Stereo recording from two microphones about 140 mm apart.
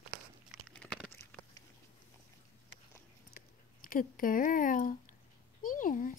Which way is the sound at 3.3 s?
80° left.